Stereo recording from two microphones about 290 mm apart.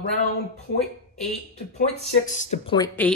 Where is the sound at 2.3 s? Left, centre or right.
Left.